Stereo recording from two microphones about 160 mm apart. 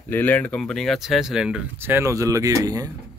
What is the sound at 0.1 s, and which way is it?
Speech, 10° left (ahead or behind).